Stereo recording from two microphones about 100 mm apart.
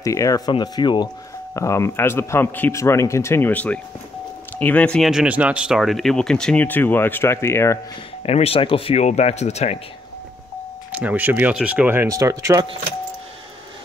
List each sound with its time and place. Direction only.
0.0 s speech: 35° left (ahead or behind)
0.5 s speech: 50° left (ahead or behind)
1.5 s a man's voice: 30° left (ahead or behind); by 5.0 s 15° left (ahead or behind)
5.0 s speech: 5° right (ahead or behind)
6.6 s a man's voice: 20° left (ahead or behind)
8.2 s speech: 85° left
10.9 s speech: 15° right (ahead or behind)
12.1 s speech: 35° right (ahead or behind)